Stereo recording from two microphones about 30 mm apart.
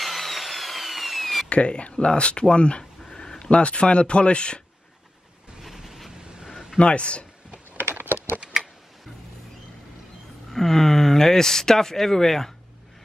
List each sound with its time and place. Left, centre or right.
0.0 s wood: centre
1.5 s speech: left
2.8 s a sound: centre
3.2 s a sound: left
3.4 s speech: left
6.8 s speech: left
10.5 s speech: centre